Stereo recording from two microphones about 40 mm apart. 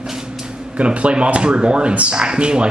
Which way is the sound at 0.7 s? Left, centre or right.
Right.